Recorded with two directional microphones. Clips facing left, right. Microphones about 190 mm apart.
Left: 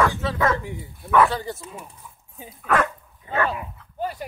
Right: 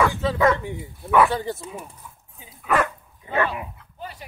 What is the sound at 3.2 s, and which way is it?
Dog, 20° right (ahead or behind).